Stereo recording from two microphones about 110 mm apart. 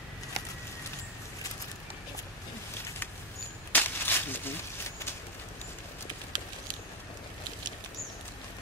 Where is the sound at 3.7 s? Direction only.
20° left (ahead or behind).